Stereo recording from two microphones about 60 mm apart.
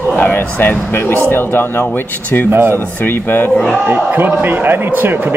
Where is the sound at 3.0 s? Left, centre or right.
Left.